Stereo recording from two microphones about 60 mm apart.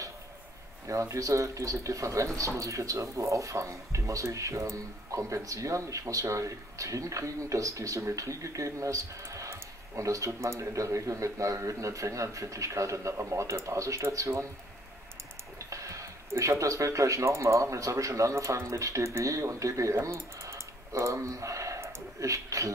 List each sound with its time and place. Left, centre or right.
0.8 s speech: right
15.7 s speech: right